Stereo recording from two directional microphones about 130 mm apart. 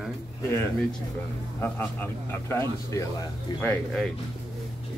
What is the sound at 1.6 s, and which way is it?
Speech, 15° left (ahead or behind).